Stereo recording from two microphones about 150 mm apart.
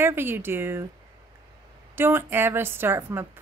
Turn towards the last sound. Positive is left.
turn(degrees=-15)  # may be behind; listen again after turning